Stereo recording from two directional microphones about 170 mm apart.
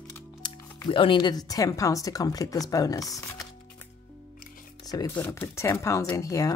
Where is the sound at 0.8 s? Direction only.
30° left (ahead or behind).